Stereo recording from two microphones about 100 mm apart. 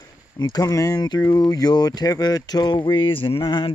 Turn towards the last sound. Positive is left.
turn(degrees=60)  # may be behind; listen again after turning